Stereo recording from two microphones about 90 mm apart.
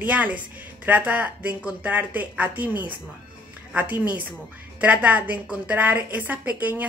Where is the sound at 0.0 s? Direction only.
15° right (ahead or behind).